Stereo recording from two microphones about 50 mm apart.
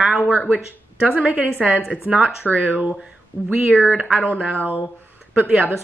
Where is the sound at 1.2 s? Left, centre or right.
Right.